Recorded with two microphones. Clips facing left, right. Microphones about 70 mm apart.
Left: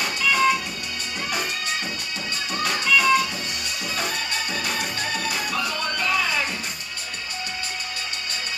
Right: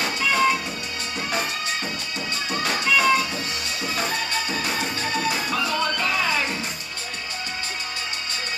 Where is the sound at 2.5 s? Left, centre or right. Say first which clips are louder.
Even; right.